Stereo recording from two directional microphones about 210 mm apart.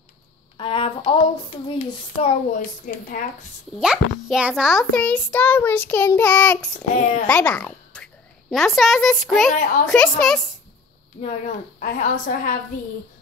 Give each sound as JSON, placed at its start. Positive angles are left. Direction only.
{"t": 0.6, "sound": "speech", "side_deg": 25}
{"t": 3.8, "sound": "a child's voice", "side_deg": -5}
{"t": 11.8, "sound": "a woman's voice", "side_deg": 40}